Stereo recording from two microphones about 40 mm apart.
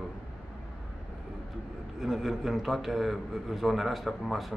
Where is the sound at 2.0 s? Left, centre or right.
Centre.